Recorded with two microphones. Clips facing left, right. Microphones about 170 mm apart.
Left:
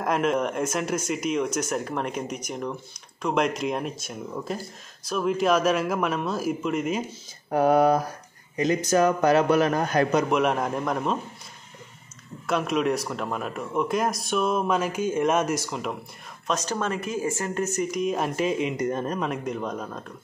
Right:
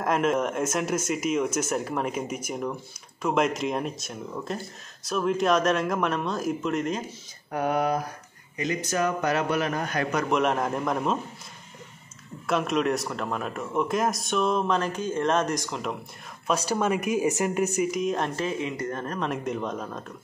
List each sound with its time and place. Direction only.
0.0 s speech: centre (ahead or behind)
7.5 s a man's voice: 35° left (ahead or behind)
10.3 s speech: centre (ahead or behind)
12.4 s speech: centre (ahead or behind)
16.4 s speech: 10° right (ahead or behind)
17.7 s speech: centre (ahead or behind); by 19.2 s 15° left (ahead or behind)
19.2 s speech: centre (ahead or behind)